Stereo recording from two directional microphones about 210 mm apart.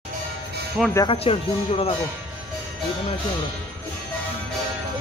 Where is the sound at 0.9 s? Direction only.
25° left (ahead or behind).